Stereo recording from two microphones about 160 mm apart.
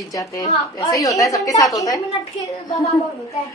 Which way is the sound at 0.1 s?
20° left (ahead or behind).